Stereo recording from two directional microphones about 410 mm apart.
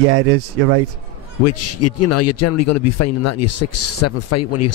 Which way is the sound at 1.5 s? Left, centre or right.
Left.